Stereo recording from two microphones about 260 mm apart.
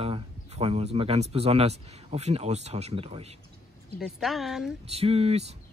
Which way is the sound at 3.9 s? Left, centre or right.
Centre.